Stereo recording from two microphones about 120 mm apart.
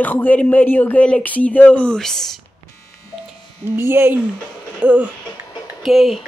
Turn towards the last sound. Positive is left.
turn(degrees=0)  # may be behind; listen again after turning